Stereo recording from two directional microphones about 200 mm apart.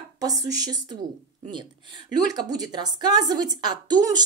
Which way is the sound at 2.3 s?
20° right (ahead or behind).